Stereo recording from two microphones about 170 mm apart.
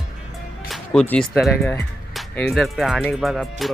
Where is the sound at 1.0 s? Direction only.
5° left (ahead or behind).